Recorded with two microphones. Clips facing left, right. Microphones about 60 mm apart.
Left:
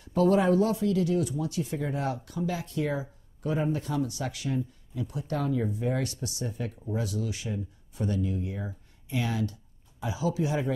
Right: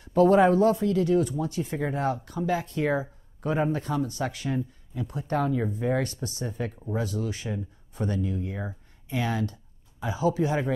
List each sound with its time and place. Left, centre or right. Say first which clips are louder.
0.0 s speech: right 4 dB; right